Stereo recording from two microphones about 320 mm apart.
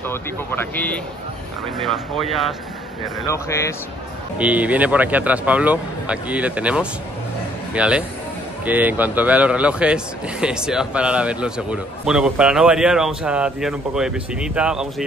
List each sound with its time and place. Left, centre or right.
0.1 s a man's voice: centre
4.4 s a man's voice: centre